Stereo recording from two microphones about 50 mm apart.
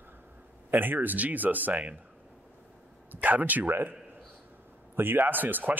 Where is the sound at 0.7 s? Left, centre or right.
Right.